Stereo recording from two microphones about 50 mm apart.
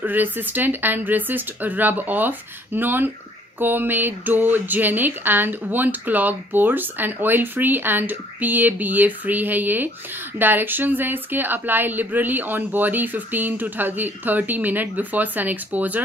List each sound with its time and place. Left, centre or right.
0.0 s speech: right